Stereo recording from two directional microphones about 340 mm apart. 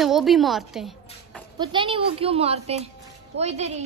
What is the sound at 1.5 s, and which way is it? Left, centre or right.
Speech, centre.